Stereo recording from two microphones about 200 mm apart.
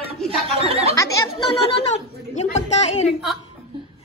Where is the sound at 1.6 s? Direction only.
35° left (ahead or behind).